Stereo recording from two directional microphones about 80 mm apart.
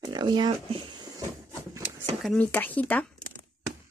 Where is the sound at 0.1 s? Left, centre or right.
Right.